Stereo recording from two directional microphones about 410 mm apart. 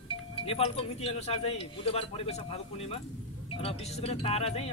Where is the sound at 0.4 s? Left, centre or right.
Centre.